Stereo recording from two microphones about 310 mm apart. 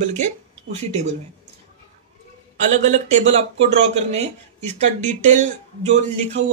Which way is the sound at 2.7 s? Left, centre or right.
Right.